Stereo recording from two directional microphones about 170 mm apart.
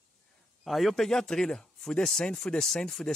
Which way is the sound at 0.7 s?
Centre (ahead or behind).